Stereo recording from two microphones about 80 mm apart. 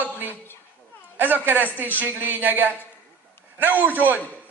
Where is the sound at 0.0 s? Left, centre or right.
Right.